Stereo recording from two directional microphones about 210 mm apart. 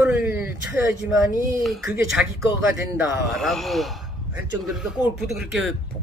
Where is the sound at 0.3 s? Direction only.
10° right (ahead or behind).